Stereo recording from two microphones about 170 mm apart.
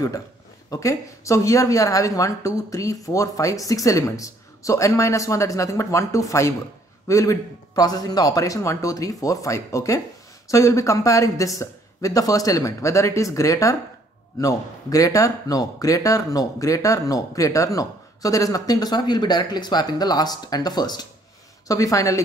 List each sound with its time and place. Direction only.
0.7 s speech: 20° left (ahead or behind)